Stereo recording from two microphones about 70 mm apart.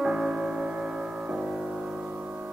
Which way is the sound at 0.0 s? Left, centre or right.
Centre.